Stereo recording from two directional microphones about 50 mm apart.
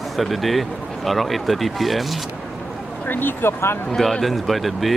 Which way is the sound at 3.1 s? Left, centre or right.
Left.